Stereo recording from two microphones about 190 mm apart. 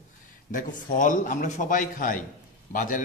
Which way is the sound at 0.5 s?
45° left (ahead or behind).